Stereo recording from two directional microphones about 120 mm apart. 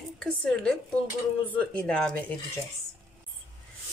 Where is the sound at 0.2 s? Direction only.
5° left (ahead or behind).